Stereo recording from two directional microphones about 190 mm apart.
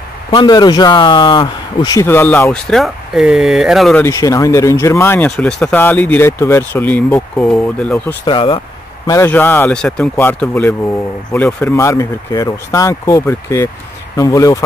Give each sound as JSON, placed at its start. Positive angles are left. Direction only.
{"t": 0.3, "sound": "speech", "side_deg": 25}
{"t": 4.0, "sound": "speech", "side_deg": 15}
{"t": 8.3, "sound": "speech", "side_deg": 25}
{"t": 9.0, "sound": "speech", "side_deg": 15}